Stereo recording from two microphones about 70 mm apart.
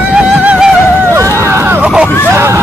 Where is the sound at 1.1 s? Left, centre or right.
Right.